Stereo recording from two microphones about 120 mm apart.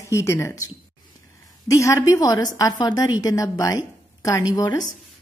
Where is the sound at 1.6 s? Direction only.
25° left (ahead or behind).